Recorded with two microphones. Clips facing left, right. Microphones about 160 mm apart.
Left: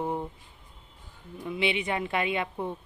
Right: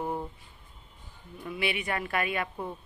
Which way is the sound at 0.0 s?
20° left (ahead or behind).